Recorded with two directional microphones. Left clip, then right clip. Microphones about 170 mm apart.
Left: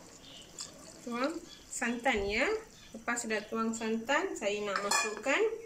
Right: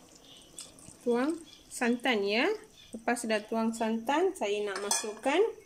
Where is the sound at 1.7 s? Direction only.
60° right (ahead or behind); by 4.7 s 90° right.